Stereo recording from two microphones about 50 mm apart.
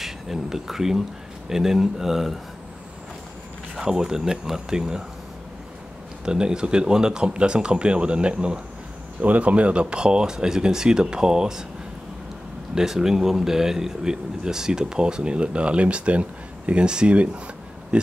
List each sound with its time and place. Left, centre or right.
0.0 s speech: centre
3.7 s speech: centre
6.2 s speech: centre
12.7 s speech: centre